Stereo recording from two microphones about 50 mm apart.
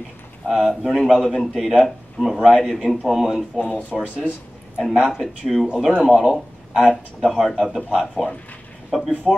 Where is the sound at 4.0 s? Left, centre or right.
Left.